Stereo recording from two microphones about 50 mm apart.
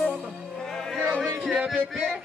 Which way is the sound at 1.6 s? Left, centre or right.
Centre.